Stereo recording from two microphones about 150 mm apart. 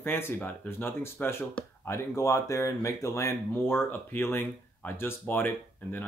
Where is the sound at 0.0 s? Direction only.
15° left (ahead or behind).